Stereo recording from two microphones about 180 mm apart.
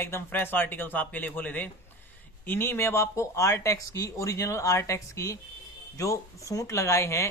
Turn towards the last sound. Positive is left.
turn(degrees=15)  # may be behind; listen again after turning